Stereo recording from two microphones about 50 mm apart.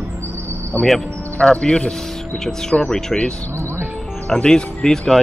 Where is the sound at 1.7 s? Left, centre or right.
Centre.